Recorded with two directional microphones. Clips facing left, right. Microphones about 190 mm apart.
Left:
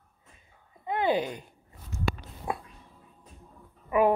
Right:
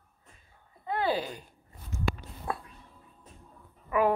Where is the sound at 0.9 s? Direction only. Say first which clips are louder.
Left 3 dB; 20° left (ahead or behind).